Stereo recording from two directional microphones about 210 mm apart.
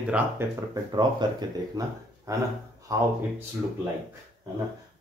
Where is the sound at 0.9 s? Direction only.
20° right (ahead or behind).